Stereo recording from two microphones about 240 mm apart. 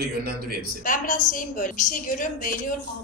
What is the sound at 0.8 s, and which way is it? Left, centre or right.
A woman's voice, left.